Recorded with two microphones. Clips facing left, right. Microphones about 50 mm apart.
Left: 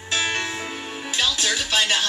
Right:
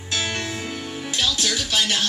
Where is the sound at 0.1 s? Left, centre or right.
Left.